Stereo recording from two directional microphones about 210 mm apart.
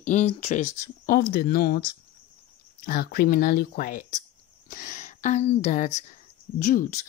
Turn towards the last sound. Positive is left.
turn(degrees=40)  # may be behind; listen again after turning